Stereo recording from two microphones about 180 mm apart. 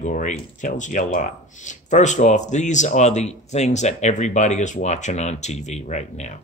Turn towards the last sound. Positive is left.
turn(degrees=40)  # may be behind; listen again after turning